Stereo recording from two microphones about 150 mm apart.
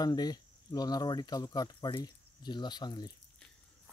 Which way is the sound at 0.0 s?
25° left (ahead or behind).